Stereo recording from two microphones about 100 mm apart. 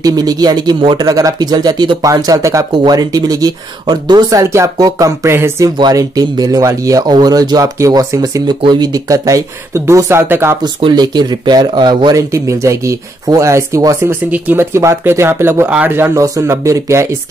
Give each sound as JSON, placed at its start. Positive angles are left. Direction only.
{"t": 0.0, "sound": "speech", "side_deg": -40}
{"t": 2.7, "sound": "speech", "side_deg": -45}
{"t": 4.4, "sound": "speech", "side_deg": -30}
{"t": 5.8, "sound": "speech", "side_deg": -40}
{"t": 10.6, "sound": "speech", "side_deg": -45}
{"t": 12.2, "sound": "speech", "side_deg": -30}
{"t": 16.2, "sound": "speech", "side_deg": -30}